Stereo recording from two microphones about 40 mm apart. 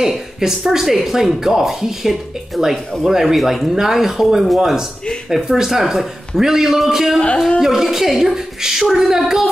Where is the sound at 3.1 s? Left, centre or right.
Centre.